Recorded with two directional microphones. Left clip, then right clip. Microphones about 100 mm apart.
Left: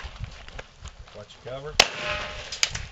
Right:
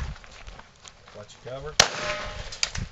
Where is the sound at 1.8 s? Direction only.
10° right (ahead or behind).